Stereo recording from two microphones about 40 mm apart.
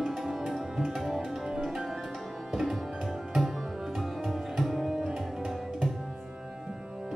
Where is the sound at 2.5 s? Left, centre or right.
Centre.